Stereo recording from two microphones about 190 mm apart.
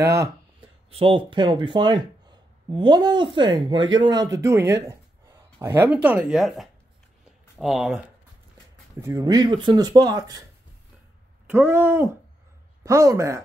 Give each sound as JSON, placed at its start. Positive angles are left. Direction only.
{"t": 0.0, "sound": "speech", "side_deg": -15}
{"t": 0.6, "sound": "speech", "side_deg": -30}
{"t": 4.8, "sound": "a sound", "side_deg": -15}
{"t": 6.0, "sound": "speech", "side_deg": -5}
{"t": 9.0, "sound": "speech", "side_deg": -20}
{"t": 11.4, "sound": "speech", "side_deg": -10}